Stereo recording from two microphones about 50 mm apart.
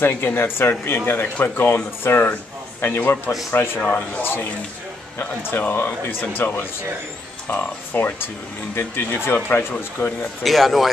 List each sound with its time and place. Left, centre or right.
0.0 s speech: left
3.8 s speech: left
4.2 s speech: left
10.4 s speech: centre